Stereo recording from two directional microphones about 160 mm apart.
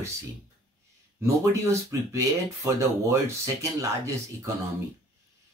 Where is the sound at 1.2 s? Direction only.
20° right (ahead or behind).